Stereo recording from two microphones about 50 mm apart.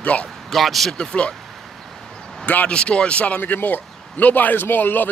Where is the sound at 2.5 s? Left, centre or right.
Left.